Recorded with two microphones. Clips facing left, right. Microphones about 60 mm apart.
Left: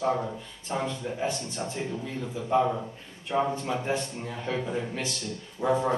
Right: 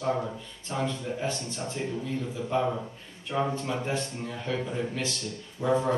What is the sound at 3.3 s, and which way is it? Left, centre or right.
A man's voice, centre.